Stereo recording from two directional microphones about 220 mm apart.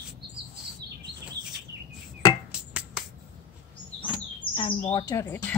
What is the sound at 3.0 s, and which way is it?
Finger snapping, 5° right (ahead or behind).